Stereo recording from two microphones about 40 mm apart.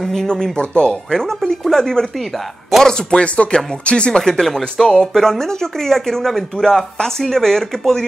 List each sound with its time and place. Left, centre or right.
0.0 s speech: centre; by 4.2 s left
4.2 s speech: centre